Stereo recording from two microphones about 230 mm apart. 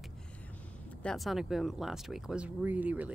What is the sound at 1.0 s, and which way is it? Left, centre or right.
Speech, centre.